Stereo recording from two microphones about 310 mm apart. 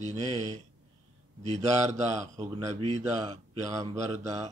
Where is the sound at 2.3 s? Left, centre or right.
Centre.